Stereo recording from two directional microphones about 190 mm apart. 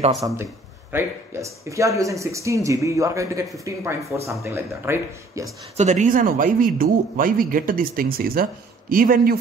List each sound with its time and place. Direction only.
0.9 s speech: 15° right (ahead or behind)
5.8 s speech: 40° right (ahead or behind)